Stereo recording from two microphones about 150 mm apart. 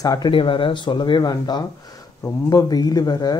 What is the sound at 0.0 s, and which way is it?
Speech, 25° left (ahead or behind).